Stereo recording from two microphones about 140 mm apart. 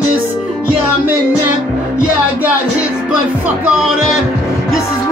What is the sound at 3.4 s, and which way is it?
Music, 10° right (ahead or behind).